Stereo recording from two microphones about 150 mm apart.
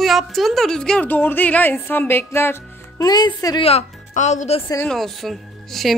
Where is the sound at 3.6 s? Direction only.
45° left (ahead or behind).